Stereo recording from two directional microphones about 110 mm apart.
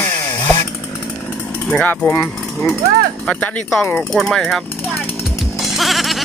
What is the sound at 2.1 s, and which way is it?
Speech, 25° left (ahead or behind).